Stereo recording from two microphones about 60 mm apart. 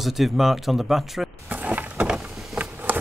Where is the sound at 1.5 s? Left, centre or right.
Right.